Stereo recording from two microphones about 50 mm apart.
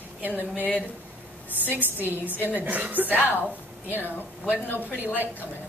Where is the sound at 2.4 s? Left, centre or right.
Right.